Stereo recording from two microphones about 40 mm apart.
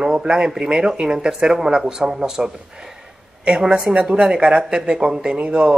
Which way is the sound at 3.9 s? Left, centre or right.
Right.